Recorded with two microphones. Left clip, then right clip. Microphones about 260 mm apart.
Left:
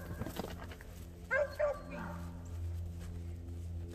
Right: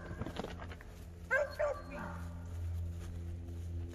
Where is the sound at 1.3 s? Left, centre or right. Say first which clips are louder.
Even; right.